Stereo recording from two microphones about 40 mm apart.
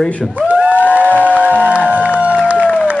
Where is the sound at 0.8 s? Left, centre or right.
Left.